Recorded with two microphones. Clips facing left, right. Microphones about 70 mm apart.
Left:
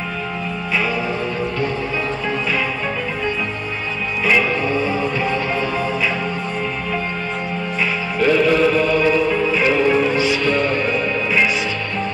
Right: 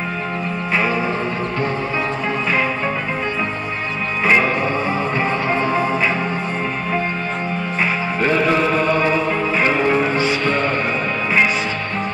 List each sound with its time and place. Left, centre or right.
4.3 s music: right
7.8 s music: right